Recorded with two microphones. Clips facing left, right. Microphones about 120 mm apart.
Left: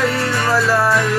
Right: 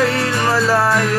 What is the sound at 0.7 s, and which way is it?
Music, 90° right.